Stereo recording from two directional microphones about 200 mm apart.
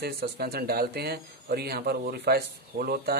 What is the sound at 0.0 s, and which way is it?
Speech, 50° right (ahead or behind).